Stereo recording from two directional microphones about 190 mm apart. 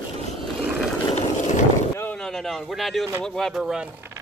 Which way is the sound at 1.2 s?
40° left (ahead or behind).